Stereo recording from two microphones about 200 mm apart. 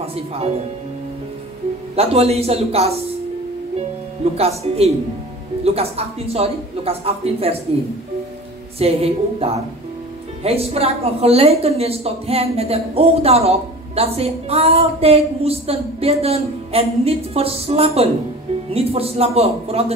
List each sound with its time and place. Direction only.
0.0 s speech: 30° right (ahead or behind)
2.0 s speech: 30° right (ahead or behind)
4.4 s a woman's voice: 30° right (ahead or behind)
8.7 s a woman's voice: 30° right (ahead or behind)